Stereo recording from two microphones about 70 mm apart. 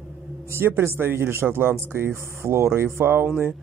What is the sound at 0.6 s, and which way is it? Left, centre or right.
Speech, right.